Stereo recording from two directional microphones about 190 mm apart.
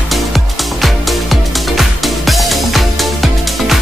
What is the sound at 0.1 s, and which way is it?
Music, centre (ahead or behind).